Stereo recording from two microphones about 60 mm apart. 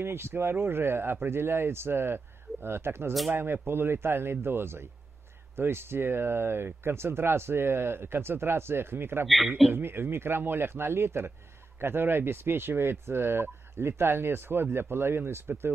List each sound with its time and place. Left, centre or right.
0.0 s speech: right